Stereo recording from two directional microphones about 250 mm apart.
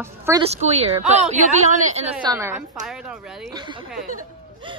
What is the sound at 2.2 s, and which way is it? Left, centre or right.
Speech, centre.